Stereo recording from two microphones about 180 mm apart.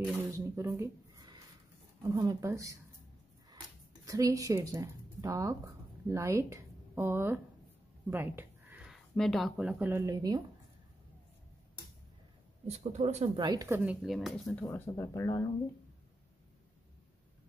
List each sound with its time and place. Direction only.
0.0 s speech: 15° right (ahead or behind)
4.0 s speech: 20° right (ahead or behind)
12.6 s speech: 35° right (ahead or behind)
13.4 s speech: 20° right (ahead or behind)
14.0 s speech: centre (ahead or behind); by 15.4 s 20° left (ahead or behind)